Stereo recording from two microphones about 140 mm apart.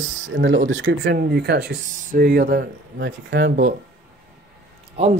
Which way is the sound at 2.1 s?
90° right.